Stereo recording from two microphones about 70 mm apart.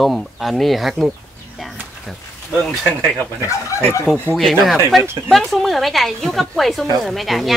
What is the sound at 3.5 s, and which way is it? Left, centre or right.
Speech, left.